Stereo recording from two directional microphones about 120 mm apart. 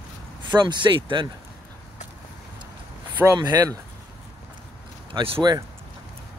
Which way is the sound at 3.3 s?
35° right (ahead or behind).